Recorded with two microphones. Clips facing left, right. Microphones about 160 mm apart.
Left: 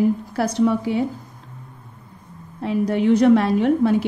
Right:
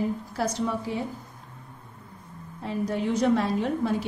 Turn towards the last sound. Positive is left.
turn(degrees=70)  # may be behind; listen again after turning